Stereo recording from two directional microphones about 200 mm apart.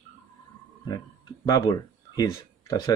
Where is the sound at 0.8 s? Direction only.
20° left (ahead or behind).